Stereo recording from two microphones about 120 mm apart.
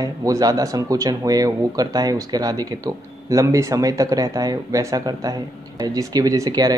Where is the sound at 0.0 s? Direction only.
30° right (ahead or behind).